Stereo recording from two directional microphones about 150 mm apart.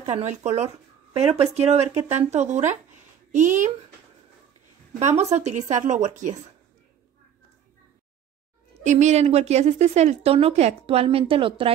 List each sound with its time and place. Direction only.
0.0 s a woman's voice: 45° right (ahead or behind)
4.9 s a woman's voice: 45° right (ahead or behind)
8.8 s a woman's voice: 50° right (ahead or behind); by 11.7 s 35° right (ahead or behind)